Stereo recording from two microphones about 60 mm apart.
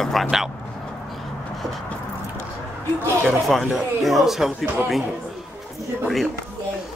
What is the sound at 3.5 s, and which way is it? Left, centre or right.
Speech, centre.